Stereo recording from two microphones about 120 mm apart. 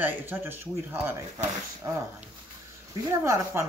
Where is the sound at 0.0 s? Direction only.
15° right (ahead or behind).